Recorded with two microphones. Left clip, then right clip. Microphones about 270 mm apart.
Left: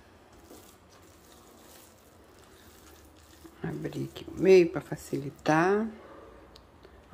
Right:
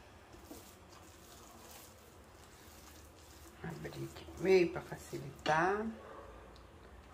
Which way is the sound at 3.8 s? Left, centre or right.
Left.